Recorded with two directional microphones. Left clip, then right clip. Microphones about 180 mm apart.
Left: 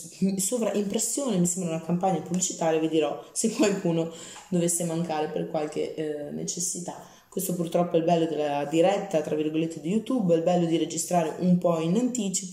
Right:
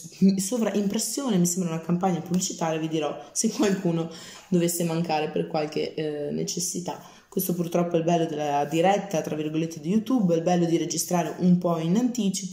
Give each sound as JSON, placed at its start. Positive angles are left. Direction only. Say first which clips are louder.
{"t": 0.2, "sound": "a man's voice", "louder": "right 2 dB", "side_deg": 0}